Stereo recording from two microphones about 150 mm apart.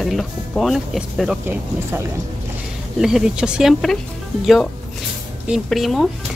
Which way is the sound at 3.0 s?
5° right (ahead or behind).